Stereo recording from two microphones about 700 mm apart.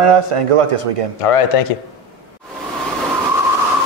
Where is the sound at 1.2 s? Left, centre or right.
Left.